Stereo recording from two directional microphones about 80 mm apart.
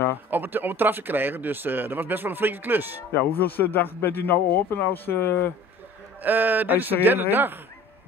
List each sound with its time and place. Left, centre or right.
0.1 s speech: right
3.1 s a man's voice: left
6.2 s speech: right